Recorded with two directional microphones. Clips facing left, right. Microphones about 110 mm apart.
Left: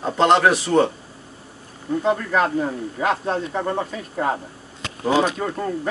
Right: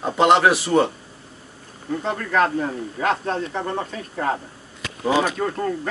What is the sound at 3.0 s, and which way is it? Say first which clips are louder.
Speech: even; 10° left (ahead or behind).